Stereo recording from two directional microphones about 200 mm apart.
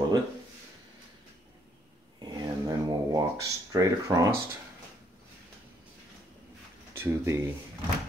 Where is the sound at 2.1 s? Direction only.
20° right (ahead or behind).